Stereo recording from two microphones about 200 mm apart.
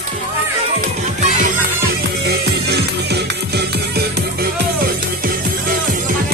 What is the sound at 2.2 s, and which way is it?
Music, 55° right (ahead or behind).